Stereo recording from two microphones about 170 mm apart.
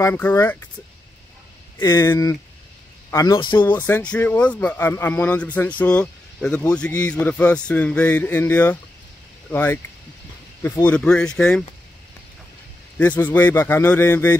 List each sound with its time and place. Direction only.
0.0 s speech: 10° left (ahead or behind)
1.8 s a man's voice: 15° left (ahead or behind)
12.9 s speech: 10° left (ahead or behind)